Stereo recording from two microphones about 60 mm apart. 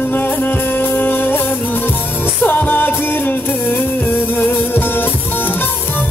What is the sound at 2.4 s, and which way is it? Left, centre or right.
Music, left.